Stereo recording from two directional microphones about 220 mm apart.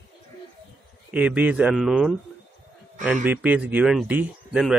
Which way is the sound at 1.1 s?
5° right (ahead or behind).